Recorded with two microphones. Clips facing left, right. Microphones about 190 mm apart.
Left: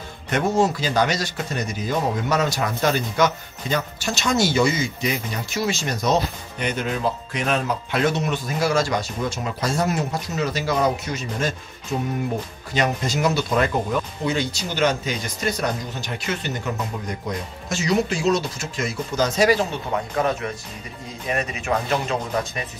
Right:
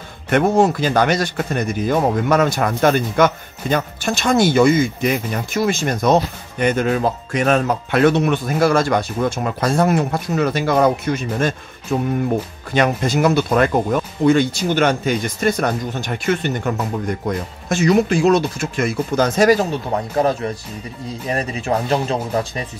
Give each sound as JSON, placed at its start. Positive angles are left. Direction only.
{"t": 0.3, "sound": "speech", "side_deg": -55}
{"t": 20.2, "sound": "speech", "side_deg": -35}